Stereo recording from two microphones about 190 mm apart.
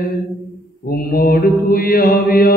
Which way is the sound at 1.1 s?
50° left (ahead or behind).